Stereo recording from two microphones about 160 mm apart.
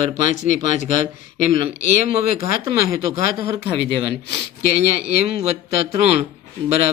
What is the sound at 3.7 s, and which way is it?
Speech, 90° left.